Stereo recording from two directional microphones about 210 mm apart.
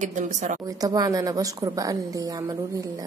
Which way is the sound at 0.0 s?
35° right (ahead or behind).